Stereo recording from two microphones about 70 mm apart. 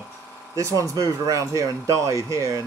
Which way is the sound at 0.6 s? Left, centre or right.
Right.